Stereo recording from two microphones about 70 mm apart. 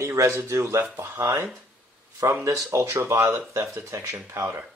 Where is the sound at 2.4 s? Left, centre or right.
Right.